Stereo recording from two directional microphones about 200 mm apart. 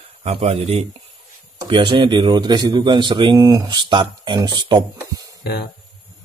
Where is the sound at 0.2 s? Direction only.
30° right (ahead or behind).